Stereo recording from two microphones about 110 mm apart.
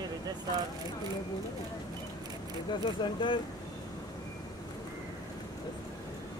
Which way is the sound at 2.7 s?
45° left (ahead or behind).